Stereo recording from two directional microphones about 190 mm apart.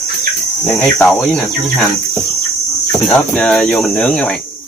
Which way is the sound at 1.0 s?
Centre (ahead or behind).